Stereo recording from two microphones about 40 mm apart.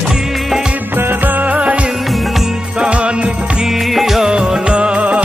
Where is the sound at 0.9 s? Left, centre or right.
Right.